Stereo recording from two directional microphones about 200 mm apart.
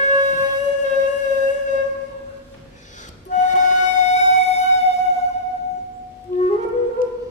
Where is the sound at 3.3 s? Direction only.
35° left (ahead or behind).